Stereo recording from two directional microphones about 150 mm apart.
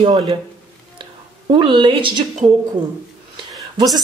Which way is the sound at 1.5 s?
35° right (ahead or behind).